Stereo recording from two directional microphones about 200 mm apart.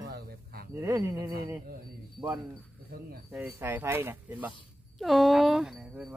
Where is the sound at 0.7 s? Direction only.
15° right (ahead or behind).